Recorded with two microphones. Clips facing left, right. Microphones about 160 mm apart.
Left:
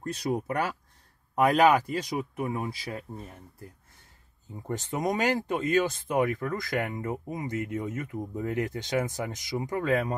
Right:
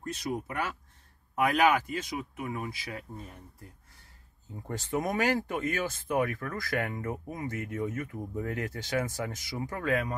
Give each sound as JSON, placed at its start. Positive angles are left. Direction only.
{"t": 0.0, "sound": "speech", "side_deg": 35}
{"t": 4.6, "sound": "speech", "side_deg": 20}